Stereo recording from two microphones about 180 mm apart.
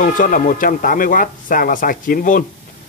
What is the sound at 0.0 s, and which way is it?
Speech, 45° left (ahead or behind).